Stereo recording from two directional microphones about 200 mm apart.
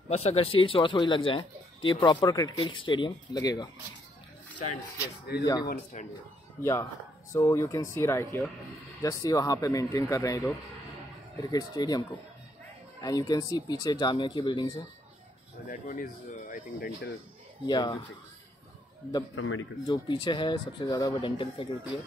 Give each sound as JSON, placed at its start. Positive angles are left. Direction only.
{"t": 0.1, "sound": "speech", "side_deg": 30}
{"t": 5.4, "sound": "a man's voice", "side_deg": 15}
{"t": 5.9, "sound": "speech", "side_deg": 40}
{"t": 6.6, "sound": "a man's voice", "side_deg": 15}
{"t": 11.5, "sound": "speech", "side_deg": 20}
{"t": 15.7, "sound": "speech", "side_deg": 40}
{"t": 17.6, "sound": "speech", "side_deg": 20}
{"t": 19.3, "sound": "speech", "side_deg": 80}
{"t": 19.9, "sound": "speech", "side_deg": 25}